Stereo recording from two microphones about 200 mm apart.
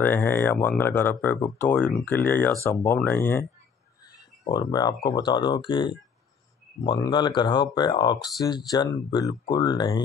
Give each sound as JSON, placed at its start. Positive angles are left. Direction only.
{"t": 0.0, "sound": "speech", "side_deg": 10}
{"t": 4.5, "sound": "speech", "side_deg": 20}